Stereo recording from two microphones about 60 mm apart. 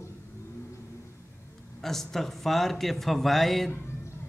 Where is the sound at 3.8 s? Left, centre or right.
Left.